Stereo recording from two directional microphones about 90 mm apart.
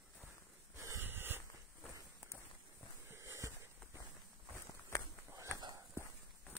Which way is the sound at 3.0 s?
30° right (ahead or behind).